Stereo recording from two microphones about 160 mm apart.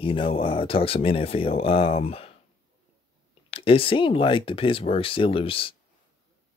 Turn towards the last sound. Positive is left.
turn(degrees=35)  # may be behind; listen again after turning